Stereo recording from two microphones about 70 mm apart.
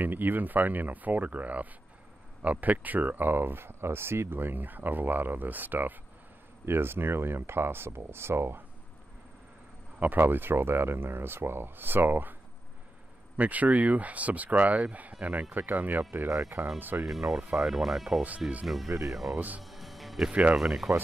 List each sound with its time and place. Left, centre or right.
0.0 s speech: right
9.9 s speech: right
13.4 s speech: right
16.3 s speech: right
17.0 s speech: centre
18.4 s speech: centre
19.0 s speech: centre
19.3 s speech: right
19.6 s music: centre
20.2 s speech: centre
20.5 s speech: centre